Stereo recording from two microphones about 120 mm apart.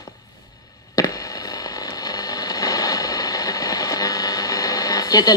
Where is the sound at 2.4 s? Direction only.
30° left (ahead or behind).